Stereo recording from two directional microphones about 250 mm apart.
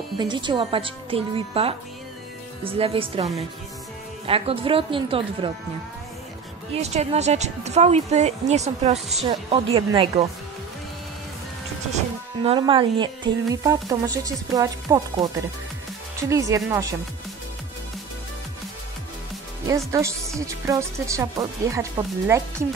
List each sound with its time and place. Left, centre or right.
0.2 s speech: centre
4.3 s speech: right
6.7 s speech: right
12.4 s speech: centre
19.9 s speech: centre